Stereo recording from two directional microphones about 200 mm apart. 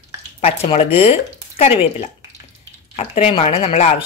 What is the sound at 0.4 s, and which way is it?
Speech, 30° left (ahead or behind).